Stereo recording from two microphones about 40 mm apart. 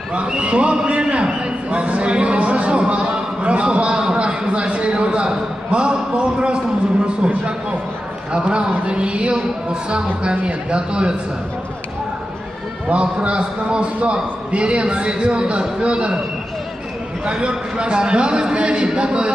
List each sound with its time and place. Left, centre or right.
0.1 s a man's voice: right
12.8 s a man's voice: right
17.2 s a man's voice: right